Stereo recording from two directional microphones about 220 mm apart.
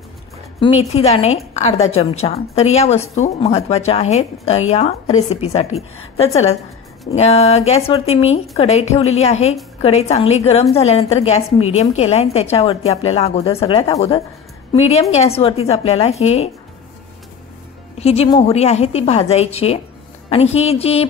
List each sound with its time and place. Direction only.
0.6 s a woman's voice: 25° left (ahead or behind)
17.9 s speech: 30° left (ahead or behind)